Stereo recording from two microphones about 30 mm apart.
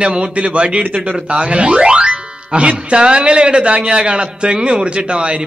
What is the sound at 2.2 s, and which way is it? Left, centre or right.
A man's voice, right.